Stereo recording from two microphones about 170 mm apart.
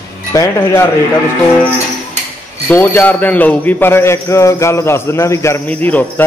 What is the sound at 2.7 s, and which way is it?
A man's voice, 10° left (ahead or behind).